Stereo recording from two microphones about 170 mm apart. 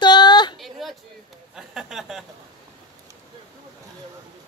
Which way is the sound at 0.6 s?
Centre (ahead or behind).